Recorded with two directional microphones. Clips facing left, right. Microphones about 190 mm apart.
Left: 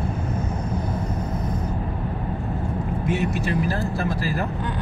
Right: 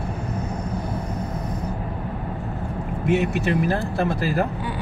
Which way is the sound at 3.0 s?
65° right (ahead or behind).